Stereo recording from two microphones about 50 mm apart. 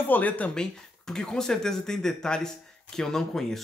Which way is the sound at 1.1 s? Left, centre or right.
Centre.